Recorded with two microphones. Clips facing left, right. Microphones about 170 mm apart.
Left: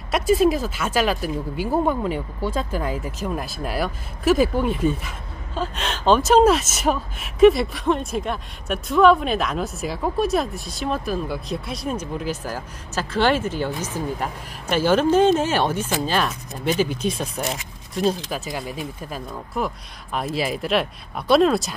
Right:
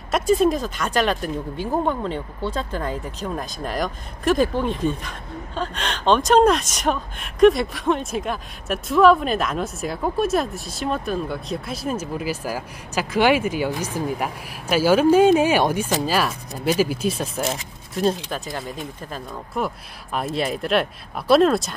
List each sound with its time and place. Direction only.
0.1 s speech: centre (ahead or behind)